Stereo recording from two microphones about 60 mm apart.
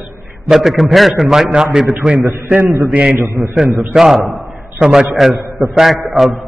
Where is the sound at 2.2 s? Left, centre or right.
Right.